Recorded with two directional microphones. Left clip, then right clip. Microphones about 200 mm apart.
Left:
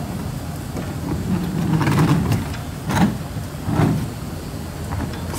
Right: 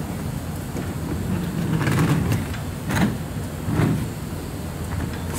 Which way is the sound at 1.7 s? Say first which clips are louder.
Left 3 dB; 20° left (ahead or behind).